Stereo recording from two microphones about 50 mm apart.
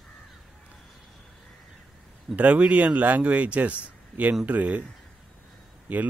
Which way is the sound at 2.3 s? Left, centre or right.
Right.